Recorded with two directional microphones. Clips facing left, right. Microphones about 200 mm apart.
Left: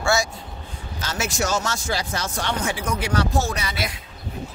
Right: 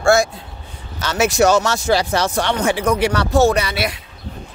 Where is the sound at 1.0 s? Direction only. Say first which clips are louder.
Right 10 dB; 70° right (ahead or behind).